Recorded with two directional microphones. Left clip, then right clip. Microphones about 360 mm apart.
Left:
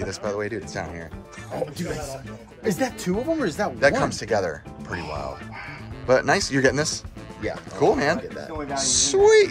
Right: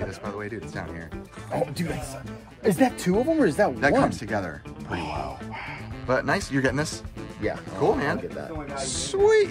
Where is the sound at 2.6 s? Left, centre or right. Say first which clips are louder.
Right 3 dB; right.